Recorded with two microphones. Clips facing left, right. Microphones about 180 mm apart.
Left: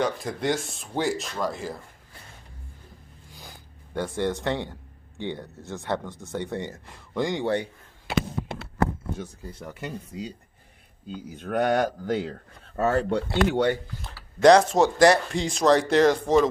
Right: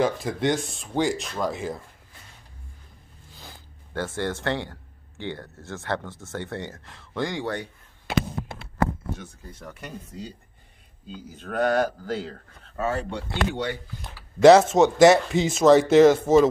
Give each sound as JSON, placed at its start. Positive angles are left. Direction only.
{"t": 0.0, "sound": "speech", "side_deg": 0}
{"t": 3.9, "sound": "speech", "side_deg": 15}
{"t": 10.1, "sound": "speech", "side_deg": 10}
{"t": 11.7, "sound": "speech", "side_deg": 20}
{"t": 12.8, "sound": "speech", "side_deg": 55}
{"t": 14.0, "sound": "speech", "side_deg": -5}